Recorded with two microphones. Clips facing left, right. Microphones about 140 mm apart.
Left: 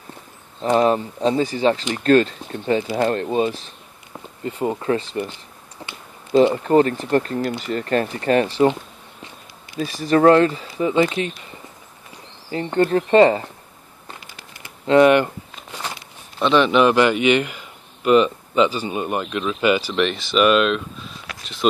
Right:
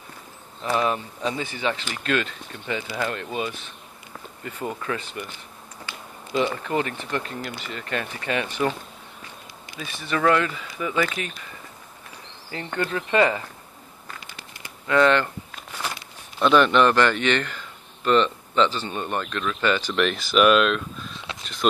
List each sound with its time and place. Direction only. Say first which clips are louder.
0.6 s speech: left 7 dB; 40° left (ahead or behind)
9.8 s speech: left 10 dB; 40° left (ahead or behind)
12.4 s speech: left 9 dB; 30° left (ahead or behind)
14.9 s a man's voice: left 6 dB; 15° left (ahead or behind)
16.3 s a man's voice: left 2 dB; centre (ahead or behind)